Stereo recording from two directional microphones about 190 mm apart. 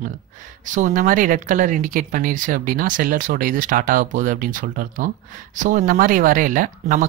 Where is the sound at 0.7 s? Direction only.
40° right (ahead or behind).